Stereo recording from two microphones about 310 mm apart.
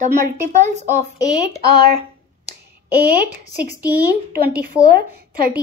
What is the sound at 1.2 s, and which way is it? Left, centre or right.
Speech, centre.